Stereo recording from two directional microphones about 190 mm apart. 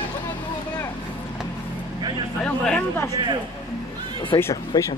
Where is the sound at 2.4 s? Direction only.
5° left (ahead or behind).